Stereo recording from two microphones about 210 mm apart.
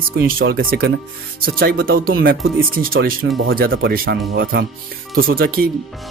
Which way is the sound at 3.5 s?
45° right (ahead or behind).